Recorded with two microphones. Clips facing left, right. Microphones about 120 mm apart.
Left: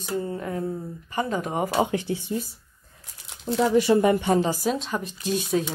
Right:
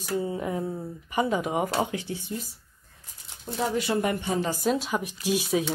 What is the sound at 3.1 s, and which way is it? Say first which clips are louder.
Crumpling: left 9 dB; 85° left.